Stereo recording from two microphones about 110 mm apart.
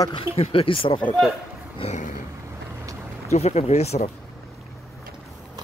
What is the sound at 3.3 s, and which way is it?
Speech, 85° left.